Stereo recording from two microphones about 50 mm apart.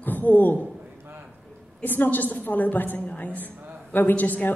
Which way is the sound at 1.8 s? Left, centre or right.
Left.